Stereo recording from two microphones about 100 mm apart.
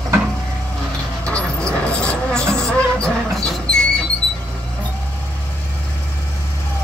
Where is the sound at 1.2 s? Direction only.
10° left (ahead or behind).